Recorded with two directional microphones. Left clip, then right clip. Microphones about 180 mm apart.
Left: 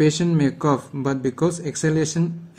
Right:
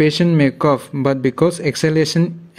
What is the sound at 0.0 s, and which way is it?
Speech, 20° right (ahead or behind).